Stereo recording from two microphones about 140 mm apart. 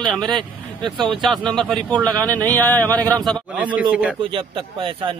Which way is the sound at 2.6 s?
10° left (ahead or behind).